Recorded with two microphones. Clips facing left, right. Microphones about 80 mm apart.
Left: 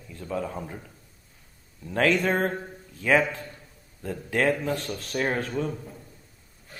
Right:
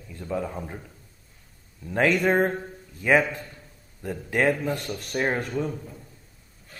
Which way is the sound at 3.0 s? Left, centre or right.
Centre.